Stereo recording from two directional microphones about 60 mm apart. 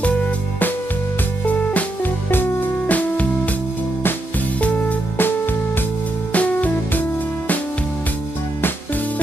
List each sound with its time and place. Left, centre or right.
1.4 s music: left
4.6 s music: left
6.3 s music: left